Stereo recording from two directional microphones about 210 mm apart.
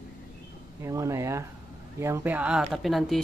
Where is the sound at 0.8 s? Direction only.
15° right (ahead or behind).